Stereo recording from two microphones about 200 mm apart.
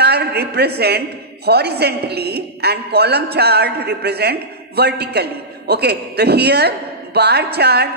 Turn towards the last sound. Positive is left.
turn(degrees=-55)  # may be behind; listen again after turning